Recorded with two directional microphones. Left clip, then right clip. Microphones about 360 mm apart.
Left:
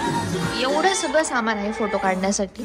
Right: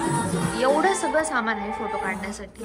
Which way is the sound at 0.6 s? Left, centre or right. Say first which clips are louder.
Even; centre.